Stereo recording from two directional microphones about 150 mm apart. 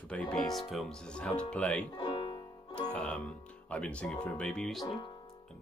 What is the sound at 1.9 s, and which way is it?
Music, 30° left (ahead or behind).